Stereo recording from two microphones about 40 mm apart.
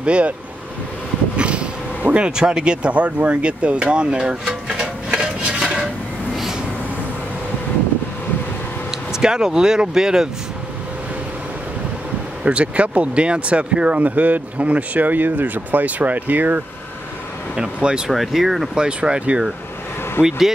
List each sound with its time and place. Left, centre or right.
0.0 s speech: right
1.3 s speech: right
9.1 s speech: centre
12.4 s speech: right
13.9 s speech: right
17.7 s speech: right
18.1 s speech: centre
18.8 s speech: right
20.2 s speech: centre